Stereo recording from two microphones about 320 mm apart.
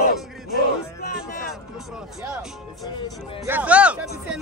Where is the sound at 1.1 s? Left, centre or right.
Left.